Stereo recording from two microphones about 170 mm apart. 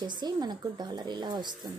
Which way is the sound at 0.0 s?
25° right (ahead or behind).